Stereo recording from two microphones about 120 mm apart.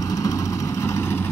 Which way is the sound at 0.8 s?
25° left (ahead or behind).